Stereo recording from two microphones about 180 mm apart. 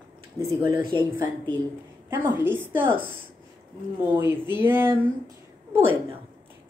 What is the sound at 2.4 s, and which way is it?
Speech, 10° right (ahead or behind).